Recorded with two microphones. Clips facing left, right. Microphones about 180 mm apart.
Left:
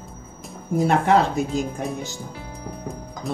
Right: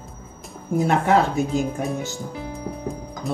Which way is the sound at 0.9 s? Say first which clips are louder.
Even; centre (ahead or behind).